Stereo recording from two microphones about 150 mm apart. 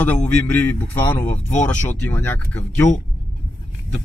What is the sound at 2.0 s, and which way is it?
Speech, 10° left (ahead or behind).